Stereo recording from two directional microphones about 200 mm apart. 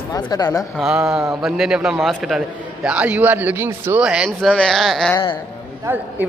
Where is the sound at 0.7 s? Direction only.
5° right (ahead or behind).